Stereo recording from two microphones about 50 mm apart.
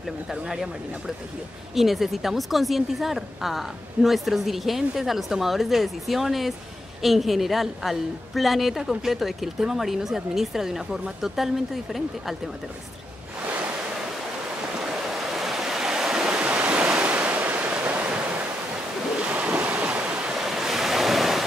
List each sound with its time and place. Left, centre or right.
0.3 s a woman's voice: centre
15.0 s waves: centre
16.4 s waves: right
19.1 s ocean: right
20.3 s waves: centre